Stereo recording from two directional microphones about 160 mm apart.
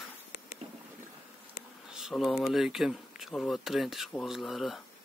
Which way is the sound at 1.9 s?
5° right (ahead or behind).